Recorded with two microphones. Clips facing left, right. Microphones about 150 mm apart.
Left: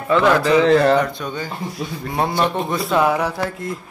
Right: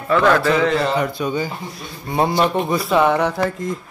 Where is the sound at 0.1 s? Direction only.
15° left (ahead or behind).